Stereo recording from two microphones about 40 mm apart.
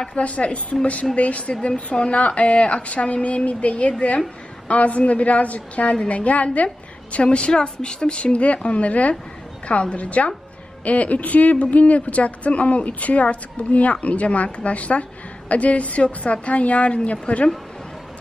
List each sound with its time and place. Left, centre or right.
0.1 s a woman's voice: left
7.2 s a woman's voice: left